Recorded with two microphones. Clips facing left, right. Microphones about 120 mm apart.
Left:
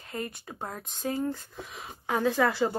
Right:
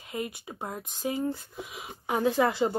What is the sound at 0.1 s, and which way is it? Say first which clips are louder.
Speech: right 1 dB; 15° right (ahead or behind).